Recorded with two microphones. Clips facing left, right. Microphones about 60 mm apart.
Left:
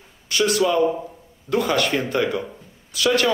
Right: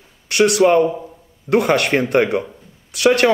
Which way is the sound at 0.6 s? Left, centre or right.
Right.